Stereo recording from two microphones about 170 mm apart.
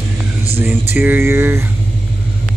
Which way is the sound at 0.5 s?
10° right (ahead or behind).